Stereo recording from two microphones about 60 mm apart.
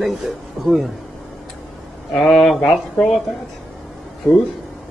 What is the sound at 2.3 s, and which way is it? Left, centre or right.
Speech, centre.